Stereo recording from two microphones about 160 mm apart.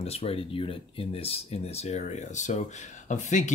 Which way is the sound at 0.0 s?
40° left (ahead or behind).